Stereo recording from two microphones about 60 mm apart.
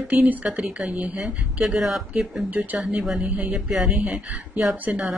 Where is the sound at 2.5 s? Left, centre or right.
Right.